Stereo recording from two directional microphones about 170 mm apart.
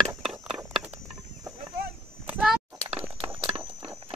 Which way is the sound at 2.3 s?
5° right (ahead or behind).